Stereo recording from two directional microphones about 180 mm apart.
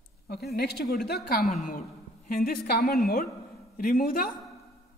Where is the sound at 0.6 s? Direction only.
65° left (ahead or behind).